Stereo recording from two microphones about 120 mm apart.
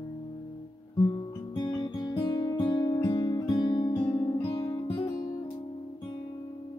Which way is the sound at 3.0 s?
40° left (ahead or behind).